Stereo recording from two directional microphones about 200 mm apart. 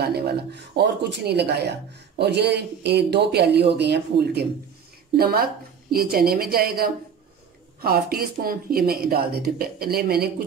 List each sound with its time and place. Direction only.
0.0 s a woman's voice: 55° right (ahead or behind)